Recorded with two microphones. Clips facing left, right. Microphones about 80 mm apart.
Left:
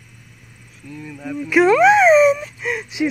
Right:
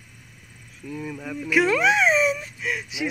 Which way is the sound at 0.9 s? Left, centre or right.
Centre.